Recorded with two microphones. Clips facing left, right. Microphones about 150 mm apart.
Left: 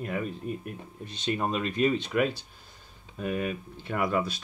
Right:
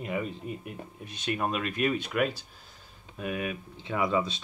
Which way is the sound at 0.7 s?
10° right (ahead or behind).